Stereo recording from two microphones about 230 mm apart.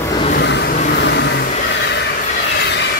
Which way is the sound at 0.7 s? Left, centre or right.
Left.